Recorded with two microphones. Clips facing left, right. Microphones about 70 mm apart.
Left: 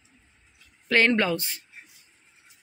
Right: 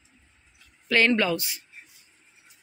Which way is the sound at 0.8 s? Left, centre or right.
Left.